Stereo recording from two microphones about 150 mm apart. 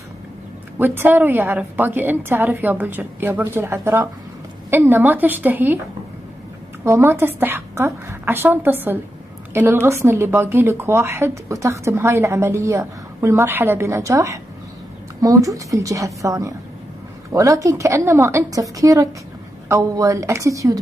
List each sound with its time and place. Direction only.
0.7 s a woman's voice: 15° right (ahead or behind)
6.8 s a woman's voice: 15° right (ahead or behind)